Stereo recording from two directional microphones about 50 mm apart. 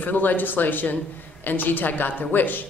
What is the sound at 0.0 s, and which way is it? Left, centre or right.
A woman's voice, left.